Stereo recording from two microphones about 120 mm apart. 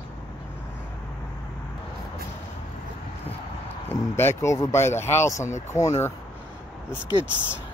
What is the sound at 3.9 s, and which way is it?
Speech, 20° left (ahead or behind).